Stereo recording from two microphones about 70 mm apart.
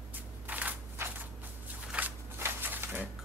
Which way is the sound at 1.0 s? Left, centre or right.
Right.